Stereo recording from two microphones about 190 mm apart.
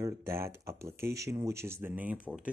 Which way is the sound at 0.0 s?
15° right (ahead or behind).